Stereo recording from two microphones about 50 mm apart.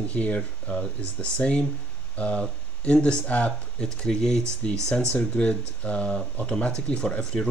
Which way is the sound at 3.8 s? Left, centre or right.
Centre.